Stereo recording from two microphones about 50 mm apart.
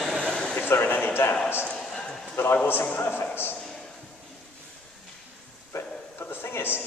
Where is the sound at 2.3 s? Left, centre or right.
Left.